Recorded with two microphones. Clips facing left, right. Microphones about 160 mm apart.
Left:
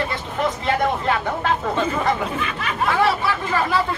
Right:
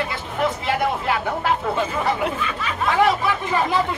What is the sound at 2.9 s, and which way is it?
Speech, 20° right (ahead or behind).